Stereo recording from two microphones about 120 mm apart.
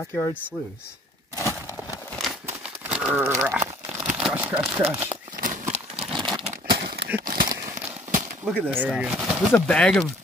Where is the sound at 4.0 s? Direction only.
10° right (ahead or behind).